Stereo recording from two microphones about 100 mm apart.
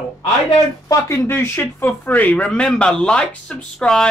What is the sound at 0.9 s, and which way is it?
Speech, 30° left (ahead or behind).